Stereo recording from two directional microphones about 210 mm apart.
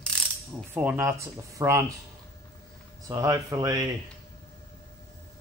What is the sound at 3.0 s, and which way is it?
Speech, 15° right (ahead or behind).